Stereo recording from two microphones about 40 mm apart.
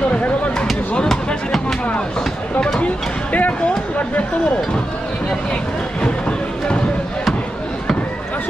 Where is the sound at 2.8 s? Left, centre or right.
Left.